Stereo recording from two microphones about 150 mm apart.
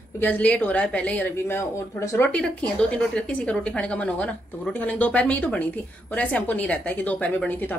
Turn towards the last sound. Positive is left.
turn(degrees=10)  # may be behind; listen again after turning